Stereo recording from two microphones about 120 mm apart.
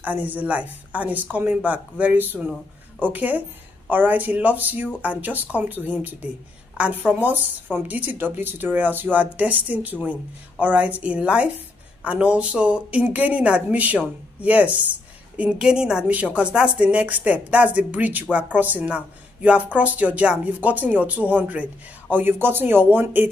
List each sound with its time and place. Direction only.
0.0 s a woman's voice: 15° right (ahead or behind)